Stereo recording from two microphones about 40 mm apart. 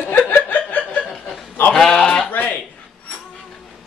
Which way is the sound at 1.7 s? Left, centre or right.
Centre.